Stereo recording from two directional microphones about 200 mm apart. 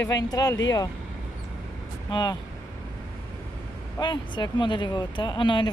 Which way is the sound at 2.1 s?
20° left (ahead or behind).